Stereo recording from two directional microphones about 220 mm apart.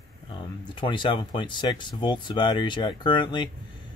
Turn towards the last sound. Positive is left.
turn(degrees=20)  # may be behind; listen again after turning